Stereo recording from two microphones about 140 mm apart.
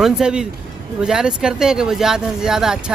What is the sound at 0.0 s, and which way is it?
Speech, 5° right (ahead or behind).